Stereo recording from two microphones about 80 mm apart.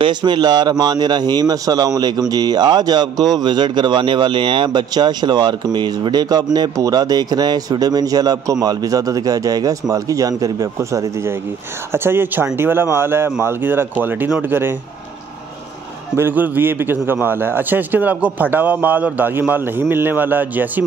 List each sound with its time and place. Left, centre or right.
0.0 s speech: right
4.6 s a man's voice: right
16.2 s a man's voice: right